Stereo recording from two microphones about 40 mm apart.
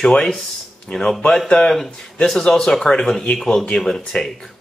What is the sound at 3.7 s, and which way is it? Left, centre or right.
Speech, centre.